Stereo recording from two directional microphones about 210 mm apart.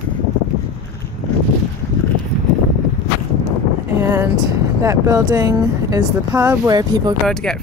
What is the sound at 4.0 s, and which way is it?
Vehicle, 10° right (ahead or behind).